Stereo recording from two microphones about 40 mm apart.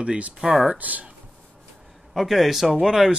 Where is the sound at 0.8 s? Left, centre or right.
Right.